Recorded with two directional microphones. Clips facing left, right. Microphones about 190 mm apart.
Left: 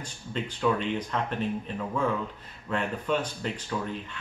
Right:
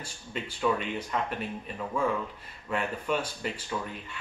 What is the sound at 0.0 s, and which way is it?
Speech, 10° right (ahead or behind).